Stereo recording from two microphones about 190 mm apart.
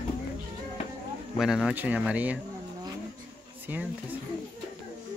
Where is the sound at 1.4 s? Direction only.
Centre (ahead or behind).